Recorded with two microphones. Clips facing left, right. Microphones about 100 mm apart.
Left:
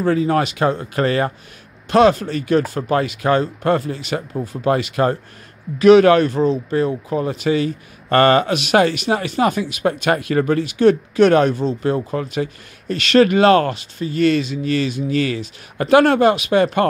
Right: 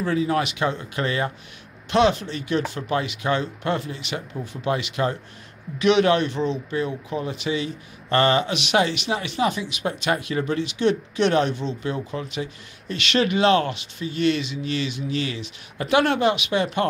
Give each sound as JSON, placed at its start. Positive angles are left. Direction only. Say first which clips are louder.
{"t": 0.0, "sound": "speech", "louder": "left 5 dB", "side_deg": 40}